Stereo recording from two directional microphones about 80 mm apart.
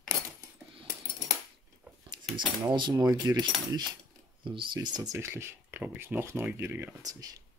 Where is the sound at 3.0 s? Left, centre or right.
Right.